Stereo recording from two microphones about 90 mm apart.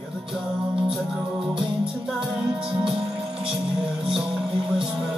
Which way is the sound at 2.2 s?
5° right (ahead or behind).